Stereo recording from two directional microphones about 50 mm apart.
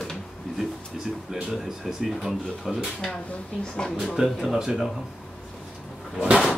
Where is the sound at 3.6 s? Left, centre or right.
Centre.